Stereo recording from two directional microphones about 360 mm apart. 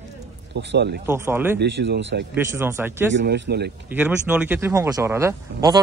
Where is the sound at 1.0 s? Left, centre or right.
Centre.